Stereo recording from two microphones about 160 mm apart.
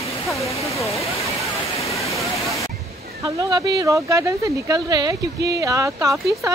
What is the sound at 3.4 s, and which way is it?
Speech, 20° right (ahead or behind).